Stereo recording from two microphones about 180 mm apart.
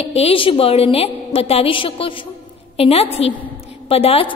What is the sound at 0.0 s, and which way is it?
A woman's voice, 35° left (ahead or behind).